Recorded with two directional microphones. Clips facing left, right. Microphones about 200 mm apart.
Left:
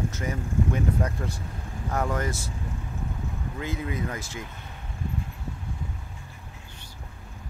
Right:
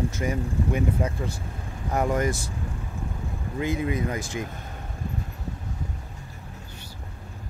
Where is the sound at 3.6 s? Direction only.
15° right (ahead or behind).